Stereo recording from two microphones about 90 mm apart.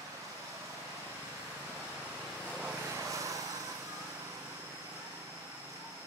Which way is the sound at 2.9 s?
35° right (ahead or behind).